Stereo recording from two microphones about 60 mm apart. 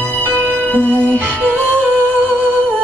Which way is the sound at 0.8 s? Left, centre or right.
Right.